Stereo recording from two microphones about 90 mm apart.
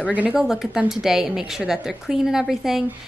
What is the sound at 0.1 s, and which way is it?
Speech, 15° right (ahead or behind).